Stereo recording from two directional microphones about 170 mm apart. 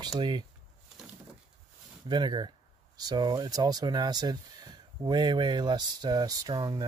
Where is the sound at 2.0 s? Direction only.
25° right (ahead or behind).